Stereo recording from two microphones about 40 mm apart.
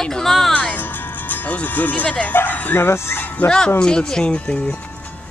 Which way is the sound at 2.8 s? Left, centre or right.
Left.